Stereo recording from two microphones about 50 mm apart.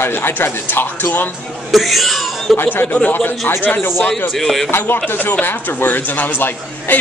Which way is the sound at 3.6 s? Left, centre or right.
Left.